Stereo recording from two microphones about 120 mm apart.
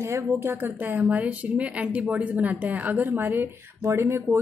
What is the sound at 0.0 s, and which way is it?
A woman's voice, 20° right (ahead or behind).